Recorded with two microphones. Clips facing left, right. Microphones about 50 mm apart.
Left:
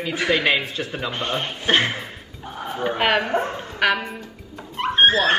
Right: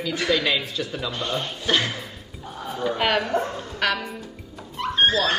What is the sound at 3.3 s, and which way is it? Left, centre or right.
Speech, left.